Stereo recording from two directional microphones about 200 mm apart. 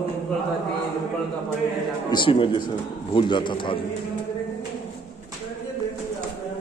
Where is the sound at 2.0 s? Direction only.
25° left (ahead or behind).